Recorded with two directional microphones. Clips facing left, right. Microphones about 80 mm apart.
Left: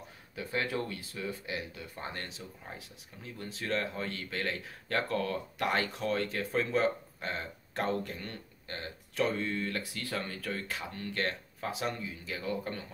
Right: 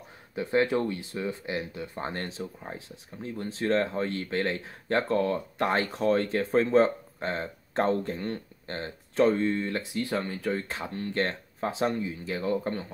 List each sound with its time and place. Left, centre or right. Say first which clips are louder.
0.4 s speech: right 9 dB; right